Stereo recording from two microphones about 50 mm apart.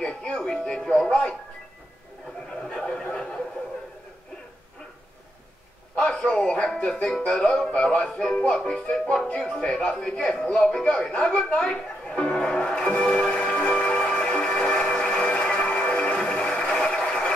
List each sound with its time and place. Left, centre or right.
0.0 s music: centre
0.9 s speech: centre
2.6 s a sound: centre
5.9 s music: centre
7.7 s speech: left
10.5 s music: centre
16.5 s a sound: centre